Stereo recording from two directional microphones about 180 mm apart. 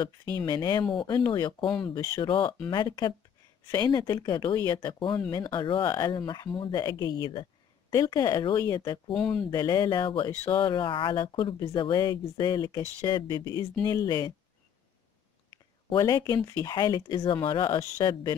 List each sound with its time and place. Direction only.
0.5 s speech: 25° left (ahead or behind)
9.1 s speech: 5° left (ahead or behind)
9.5 s speech: 20° left (ahead or behind)
15.9 s speech: 25° left (ahead or behind)